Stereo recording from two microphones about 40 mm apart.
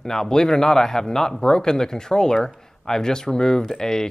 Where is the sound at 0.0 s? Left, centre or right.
Centre.